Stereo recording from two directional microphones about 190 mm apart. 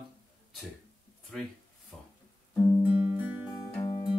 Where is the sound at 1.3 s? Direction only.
5° left (ahead or behind).